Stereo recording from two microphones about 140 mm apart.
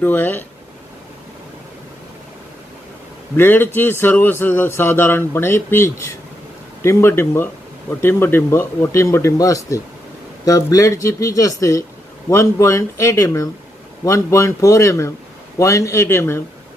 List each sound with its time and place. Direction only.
0.0 s a man's voice: 15° left (ahead or behind)
3.3 s a man's voice: 15° left (ahead or behind)